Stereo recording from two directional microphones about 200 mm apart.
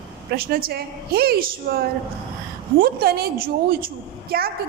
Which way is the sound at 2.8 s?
50° right (ahead or behind).